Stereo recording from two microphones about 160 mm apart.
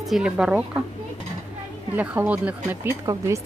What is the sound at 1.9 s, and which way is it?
Speech, 10° right (ahead or behind).